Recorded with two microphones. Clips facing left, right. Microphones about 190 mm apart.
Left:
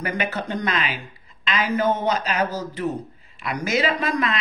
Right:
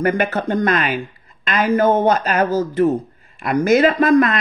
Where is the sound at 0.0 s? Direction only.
50° right (ahead or behind).